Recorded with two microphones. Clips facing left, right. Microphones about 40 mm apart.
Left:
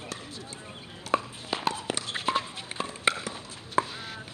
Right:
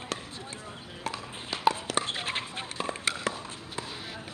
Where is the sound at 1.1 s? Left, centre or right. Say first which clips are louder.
Left 8 dB; right.